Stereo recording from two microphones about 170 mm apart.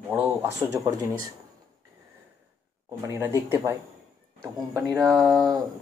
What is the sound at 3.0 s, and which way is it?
Speech, 15° right (ahead or behind).